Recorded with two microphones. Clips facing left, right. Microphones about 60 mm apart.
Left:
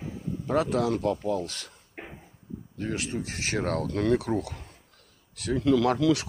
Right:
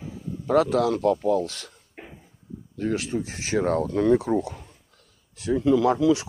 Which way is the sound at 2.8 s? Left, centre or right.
Left.